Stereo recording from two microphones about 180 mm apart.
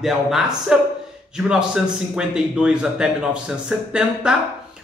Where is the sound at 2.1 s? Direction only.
5° right (ahead or behind).